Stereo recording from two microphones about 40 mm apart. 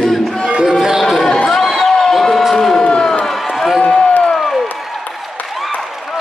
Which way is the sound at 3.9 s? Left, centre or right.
Left.